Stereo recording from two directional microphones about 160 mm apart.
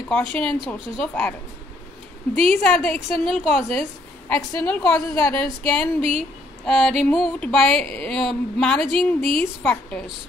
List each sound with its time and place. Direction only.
0.1 s speech: 5° left (ahead or behind)
2.3 s speech: 40° right (ahead or behind)
2.6 s speech: 5° left (ahead or behind)
5.9 s speech: 40° right (ahead or behind)
6.6 s speech: 5° left (ahead or behind)